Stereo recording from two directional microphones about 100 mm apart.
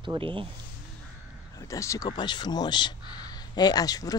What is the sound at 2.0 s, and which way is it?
Speech, 50° left (ahead or behind).